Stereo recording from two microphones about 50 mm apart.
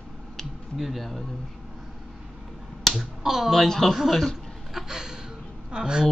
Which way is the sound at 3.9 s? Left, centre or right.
Centre.